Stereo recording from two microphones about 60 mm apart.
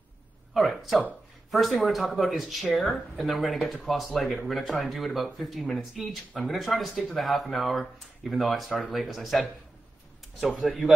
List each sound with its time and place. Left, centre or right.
0.6 s speech: centre
10.6 s speech: centre